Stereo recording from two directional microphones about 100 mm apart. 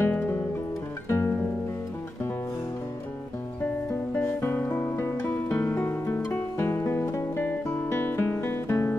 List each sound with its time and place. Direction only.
0.0 s music: 20° left (ahead or behind)
4.1 s music: 20° left (ahead or behind)
7.7 s guitar: 20° left (ahead or behind)